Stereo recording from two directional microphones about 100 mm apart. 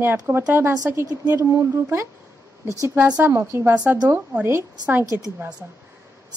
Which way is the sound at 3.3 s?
25° right (ahead or behind).